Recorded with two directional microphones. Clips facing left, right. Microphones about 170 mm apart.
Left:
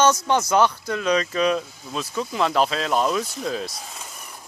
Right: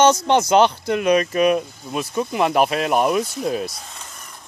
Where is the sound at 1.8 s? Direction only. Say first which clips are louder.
Right 4 dB; 15° right (ahead or behind).